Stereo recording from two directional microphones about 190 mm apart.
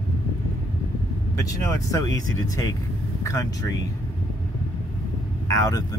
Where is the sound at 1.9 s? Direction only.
20° left (ahead or behind).